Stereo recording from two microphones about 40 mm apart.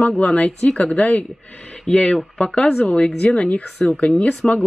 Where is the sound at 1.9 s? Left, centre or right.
Centre.